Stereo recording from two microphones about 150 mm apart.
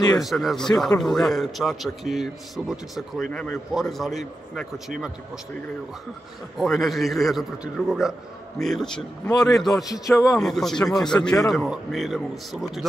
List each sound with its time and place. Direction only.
0.2 s a man's voice: centre (ahead or behind)
6.6 s a man's voice: centre (ahead or behind)
10.0 s speech: 20° left (ahead or behind)
10.4 s a man's voice: centre (ahead or behind)